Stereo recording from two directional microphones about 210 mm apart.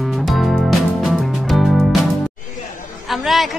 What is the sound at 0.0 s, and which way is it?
Music, centre (ahead or behind).